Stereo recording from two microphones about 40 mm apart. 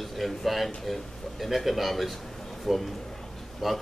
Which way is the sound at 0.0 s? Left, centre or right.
Centre.